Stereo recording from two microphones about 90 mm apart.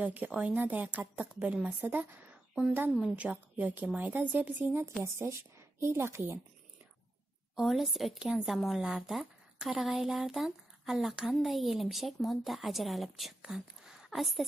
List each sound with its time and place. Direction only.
0.0 s a woman's voice: 15° right (ahead or behind)
7.5 s speech: 5° right (ahead or behind)